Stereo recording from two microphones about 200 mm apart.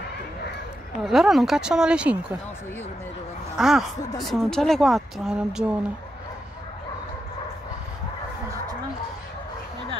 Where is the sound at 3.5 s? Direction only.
Centre (ahead or behind).